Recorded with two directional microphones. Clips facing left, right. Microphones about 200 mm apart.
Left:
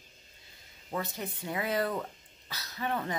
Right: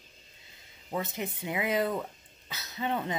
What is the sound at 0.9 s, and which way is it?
A woman's voice, 20° right (ahead or behind).